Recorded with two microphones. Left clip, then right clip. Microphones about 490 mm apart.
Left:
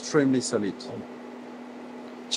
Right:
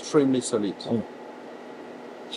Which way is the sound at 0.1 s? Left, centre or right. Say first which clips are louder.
Right 2 dB; left.